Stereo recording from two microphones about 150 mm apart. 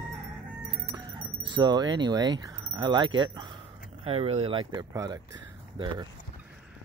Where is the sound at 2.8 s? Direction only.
30° right (ahead or behind).